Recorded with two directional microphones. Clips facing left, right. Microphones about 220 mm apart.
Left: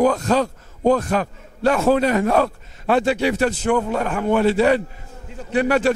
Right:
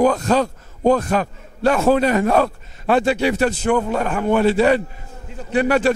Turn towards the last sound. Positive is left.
turn(degrees=-15)  # may be behind; listen again after turning